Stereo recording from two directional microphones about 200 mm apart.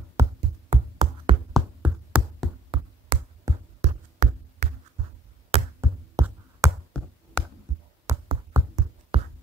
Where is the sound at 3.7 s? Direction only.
35° right (ahead or behind).